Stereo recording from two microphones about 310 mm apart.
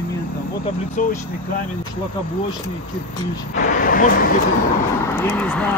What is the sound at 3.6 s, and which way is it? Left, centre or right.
Speech, left.